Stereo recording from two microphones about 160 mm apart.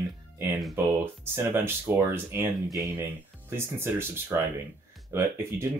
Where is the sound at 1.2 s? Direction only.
15° right (ahead or behind).